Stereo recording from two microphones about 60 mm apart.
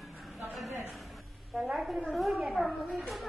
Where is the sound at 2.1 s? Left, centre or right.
Centre.